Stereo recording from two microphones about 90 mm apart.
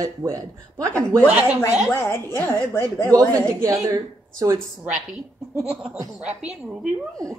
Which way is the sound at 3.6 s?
40° right (ahead or behind).